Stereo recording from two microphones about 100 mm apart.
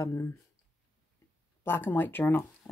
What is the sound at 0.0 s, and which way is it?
Speech, 30° left (ahead or behind).